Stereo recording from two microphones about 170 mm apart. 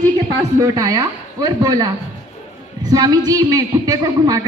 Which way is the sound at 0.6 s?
20° right (ahead or behind).